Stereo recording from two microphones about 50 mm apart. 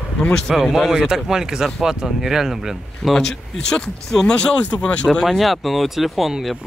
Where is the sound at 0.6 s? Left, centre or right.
Centre.